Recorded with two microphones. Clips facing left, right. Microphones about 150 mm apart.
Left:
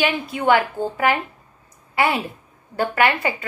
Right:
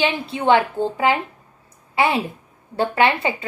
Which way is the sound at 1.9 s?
25° right (ahead or behind).